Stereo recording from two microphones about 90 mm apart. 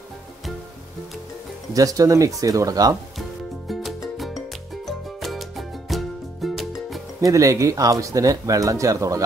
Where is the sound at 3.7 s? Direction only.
Centre (ahead or behind).